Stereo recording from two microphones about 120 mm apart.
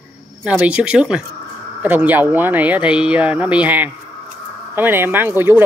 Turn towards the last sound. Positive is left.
turn(degrees=-20)  # may be behind; listen again after turning